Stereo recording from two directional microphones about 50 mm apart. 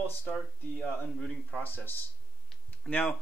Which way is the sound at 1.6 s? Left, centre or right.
Left.